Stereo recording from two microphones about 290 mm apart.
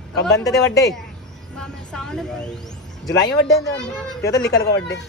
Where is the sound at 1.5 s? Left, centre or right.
Centre.